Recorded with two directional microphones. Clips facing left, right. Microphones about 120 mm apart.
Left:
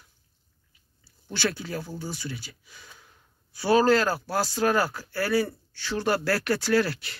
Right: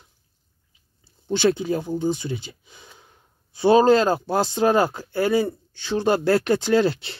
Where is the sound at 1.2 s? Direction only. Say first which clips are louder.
Right 10 dB; 20° right (ahead or behind).